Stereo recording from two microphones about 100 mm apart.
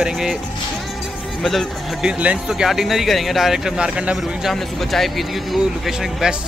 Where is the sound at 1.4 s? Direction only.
Centre (ahead or behind).